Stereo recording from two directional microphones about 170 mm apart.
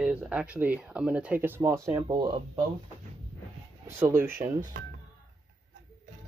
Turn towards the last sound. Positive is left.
turn(degrees=-10)  # may be behind; listen again after turning